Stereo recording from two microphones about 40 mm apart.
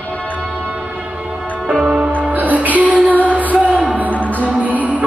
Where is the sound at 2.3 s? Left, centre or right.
Right.